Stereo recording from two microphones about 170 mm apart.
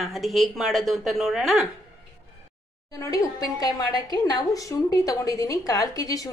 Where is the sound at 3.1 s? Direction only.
20° left (ahead or behind).